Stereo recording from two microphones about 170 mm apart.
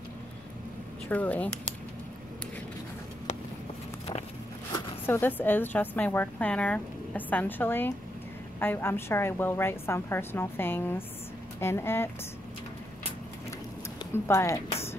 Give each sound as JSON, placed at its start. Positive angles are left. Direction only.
{"t": 1.0, "sound": "a woman's voice", "side_deg": 10}
{"t": 5.0, "sound": "a woman's voice", "side_deg": 10}
{"t": 14.1, "sound": "a woman's voice", "side_deg": 15}